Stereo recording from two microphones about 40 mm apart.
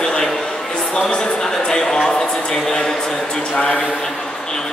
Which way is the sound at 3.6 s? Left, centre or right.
Left.